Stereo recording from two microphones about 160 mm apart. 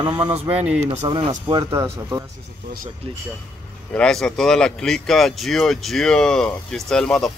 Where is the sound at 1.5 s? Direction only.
25° right (ahead or behind).